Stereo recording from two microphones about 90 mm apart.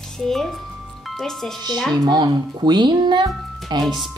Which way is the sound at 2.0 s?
55° right (ahead or behind).